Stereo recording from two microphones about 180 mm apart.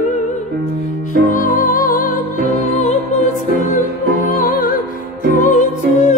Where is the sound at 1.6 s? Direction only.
50° left (ahead or behind).